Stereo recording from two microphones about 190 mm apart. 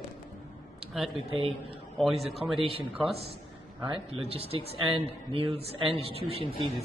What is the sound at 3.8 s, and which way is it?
A man's voice, 30° right (ahead or behind).